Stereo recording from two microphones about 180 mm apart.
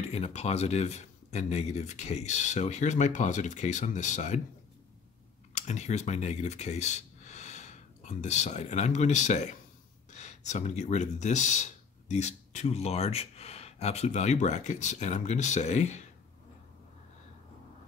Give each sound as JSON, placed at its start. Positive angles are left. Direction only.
{"t": 0.1, "sound": "speech", "side_deg": 40}
{"t": 5.5, "sound": "speech", "side_deg": 40}